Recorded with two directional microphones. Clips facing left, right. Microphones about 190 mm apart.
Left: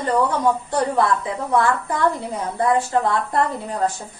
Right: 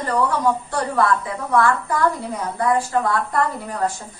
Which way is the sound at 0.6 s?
20° left (ahead or behind).